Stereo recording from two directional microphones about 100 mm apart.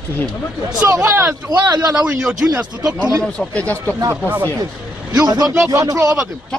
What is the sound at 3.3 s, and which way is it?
Speech, 15° left (ahead or behind).